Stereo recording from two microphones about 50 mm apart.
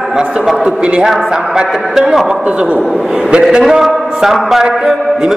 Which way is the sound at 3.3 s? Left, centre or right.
Centre.